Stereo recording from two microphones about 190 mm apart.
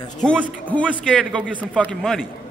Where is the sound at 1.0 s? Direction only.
5° left (ahead or behind).